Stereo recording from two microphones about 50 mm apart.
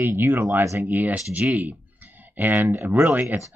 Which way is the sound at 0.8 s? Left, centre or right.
Right.